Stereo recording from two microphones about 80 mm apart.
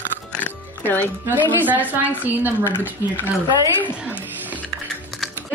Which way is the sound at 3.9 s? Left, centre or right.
Centre.